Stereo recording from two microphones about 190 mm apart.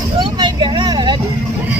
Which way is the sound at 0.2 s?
25° right (ahead or behind).